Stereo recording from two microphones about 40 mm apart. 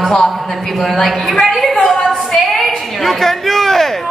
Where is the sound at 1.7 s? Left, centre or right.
Centre.